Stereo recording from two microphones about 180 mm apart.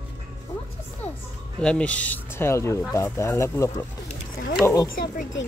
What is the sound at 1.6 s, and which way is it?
Speech, 5° left (ahead or behind).